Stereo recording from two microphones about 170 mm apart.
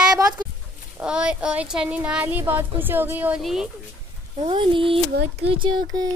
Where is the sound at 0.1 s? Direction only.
20° right (ahead or behind).